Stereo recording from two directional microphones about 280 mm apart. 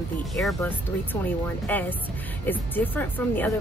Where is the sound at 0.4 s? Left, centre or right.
Centre.